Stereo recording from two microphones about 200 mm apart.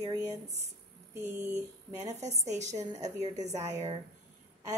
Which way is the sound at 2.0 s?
35° right (ahead or behind).